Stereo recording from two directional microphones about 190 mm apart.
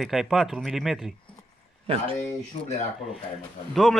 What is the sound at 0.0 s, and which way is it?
Speech, centre (ahead or behind).